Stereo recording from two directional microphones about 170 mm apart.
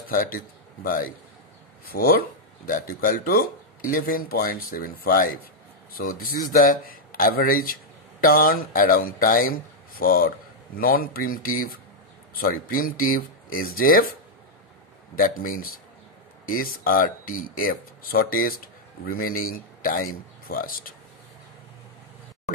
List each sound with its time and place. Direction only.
0.1 s a man's voice: 55° left (ahead or behind)
1.9 s a man's voice: 60° left (ahead or behind)
15.1 s a man's voice: 55° left (ahead or behind)